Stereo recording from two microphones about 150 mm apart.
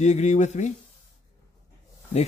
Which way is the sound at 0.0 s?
50° left (ahead or behind).